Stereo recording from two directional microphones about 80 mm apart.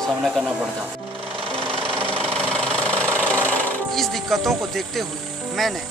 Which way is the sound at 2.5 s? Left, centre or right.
Right.